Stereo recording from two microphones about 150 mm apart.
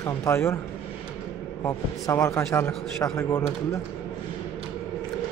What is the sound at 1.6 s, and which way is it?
A man's voice, 20° left (ahead or behind).